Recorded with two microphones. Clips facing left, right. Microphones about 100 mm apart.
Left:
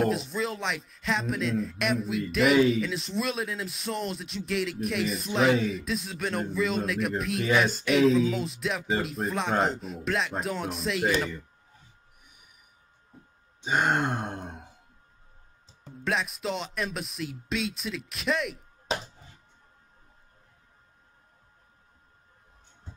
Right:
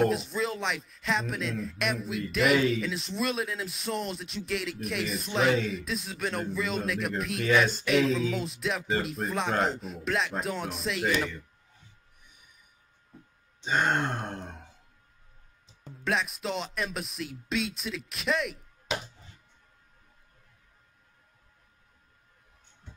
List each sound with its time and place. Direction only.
0.0 s speech: centre (ahead or behind)
13.6 s grunt: 10° left (ahead or behind)
16.0 s speech: centre (ahead or behind)
18.9 s a sound: 35° left (ahead or behind)